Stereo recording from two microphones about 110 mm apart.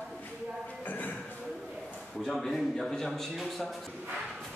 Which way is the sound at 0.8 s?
15° left (ahead or behind).